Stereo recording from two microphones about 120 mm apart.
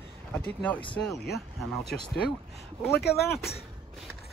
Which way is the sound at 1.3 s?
5° left (ahead or behind).